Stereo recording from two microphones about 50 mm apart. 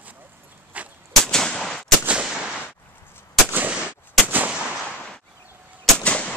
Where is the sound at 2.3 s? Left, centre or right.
Centre.